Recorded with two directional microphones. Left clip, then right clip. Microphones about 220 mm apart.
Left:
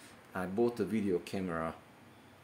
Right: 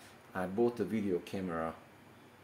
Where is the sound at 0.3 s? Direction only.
15° left (ahead or behind).